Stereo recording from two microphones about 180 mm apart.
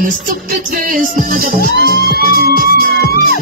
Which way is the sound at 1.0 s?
50° right (ahead or behind).